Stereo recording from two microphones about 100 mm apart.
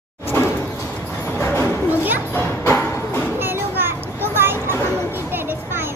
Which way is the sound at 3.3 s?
20° right (ahead or behind).